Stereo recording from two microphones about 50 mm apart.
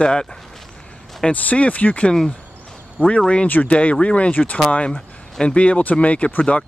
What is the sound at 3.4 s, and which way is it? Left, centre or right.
Speech, left.